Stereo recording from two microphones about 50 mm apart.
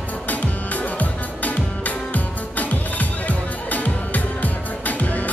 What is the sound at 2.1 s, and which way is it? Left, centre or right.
Music, left.